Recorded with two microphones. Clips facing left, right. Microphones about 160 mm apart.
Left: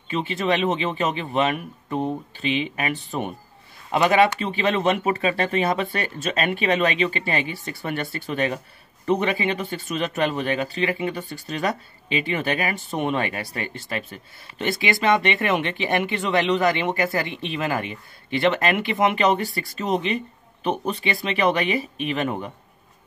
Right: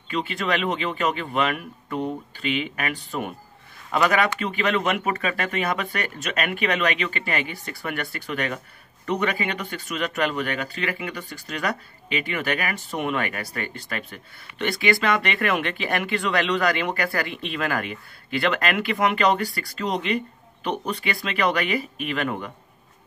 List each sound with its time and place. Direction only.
0.1 s speech: 25° left (ahead or behind)